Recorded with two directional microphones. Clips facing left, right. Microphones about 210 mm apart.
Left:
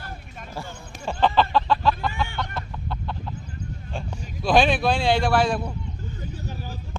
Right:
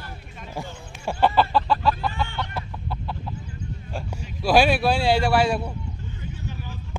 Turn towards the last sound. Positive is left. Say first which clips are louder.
# left 1 dB
turn(degrees=40)  # may be behind; listen again after turning